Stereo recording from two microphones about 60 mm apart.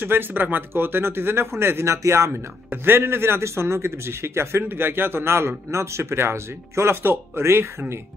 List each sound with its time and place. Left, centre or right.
0.0 s speech: right
2.7 s speech: right